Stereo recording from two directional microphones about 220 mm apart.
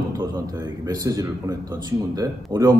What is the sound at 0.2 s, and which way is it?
A man's voice, 15° right (ahead or behind).